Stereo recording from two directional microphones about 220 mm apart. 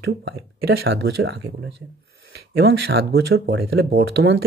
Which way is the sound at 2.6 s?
50° right (ahead or behind).